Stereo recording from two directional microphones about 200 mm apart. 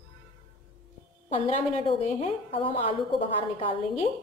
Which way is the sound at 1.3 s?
35° left (ahead or behind).